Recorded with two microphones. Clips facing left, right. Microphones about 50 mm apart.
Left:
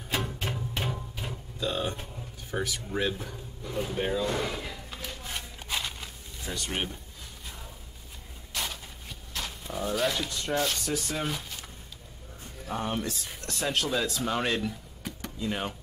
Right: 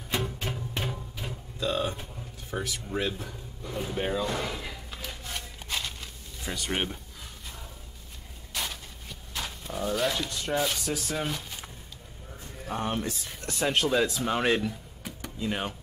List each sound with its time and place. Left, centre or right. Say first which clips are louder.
0.2 s music: even; centre
2.5 s speech: left 1 dB; centre
4.0 s speech: even; centre
4.4 s a sound: left 1 dB; centre
6.4 s speech: right 1 dB; centre
6.7 s speech: right 3 dB; right
8.5 s a sound: even; centre
9.3 s speech: even; centre
12.6 s speech: right 1 dB; centre
14.6 s a sound: right 1 dB; centre